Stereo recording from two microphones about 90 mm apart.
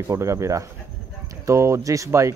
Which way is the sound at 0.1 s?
35° right (ahead or behind).